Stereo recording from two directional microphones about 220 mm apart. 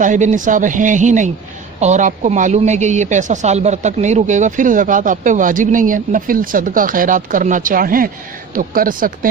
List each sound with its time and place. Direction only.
0.0 s speech: 35° right (ahead or behind)